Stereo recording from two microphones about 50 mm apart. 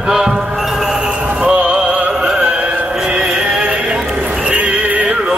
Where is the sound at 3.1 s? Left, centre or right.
Centre.